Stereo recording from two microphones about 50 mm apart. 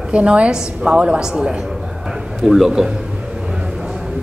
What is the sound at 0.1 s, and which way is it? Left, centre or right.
A woman's voice, right.